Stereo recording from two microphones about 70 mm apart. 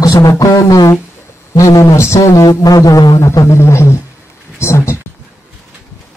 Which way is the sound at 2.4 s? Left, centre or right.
Left.